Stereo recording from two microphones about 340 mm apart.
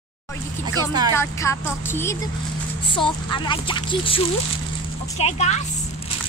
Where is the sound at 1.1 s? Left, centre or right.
Centre.